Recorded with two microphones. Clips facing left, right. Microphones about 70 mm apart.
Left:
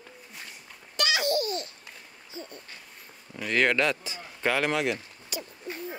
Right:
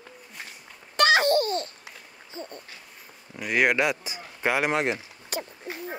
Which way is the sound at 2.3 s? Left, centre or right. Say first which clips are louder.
Right 3 dB; right.